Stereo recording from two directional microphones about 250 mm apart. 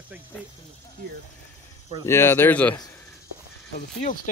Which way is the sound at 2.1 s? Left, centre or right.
Centre.